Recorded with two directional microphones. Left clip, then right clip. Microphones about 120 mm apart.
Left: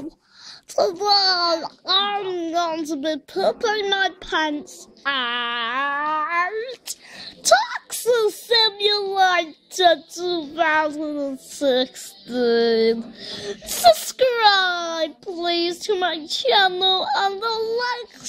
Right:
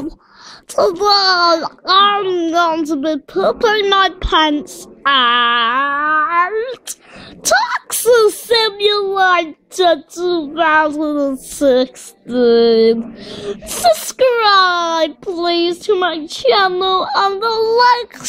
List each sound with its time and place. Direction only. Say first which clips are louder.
0.7 s speech: right 6 dB; 25° right (ahead or behind)